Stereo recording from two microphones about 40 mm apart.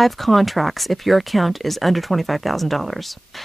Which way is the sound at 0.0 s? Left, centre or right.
Centre.